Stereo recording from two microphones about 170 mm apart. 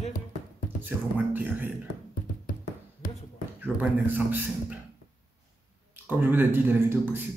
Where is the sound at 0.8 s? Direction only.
10° right (ahead or behind).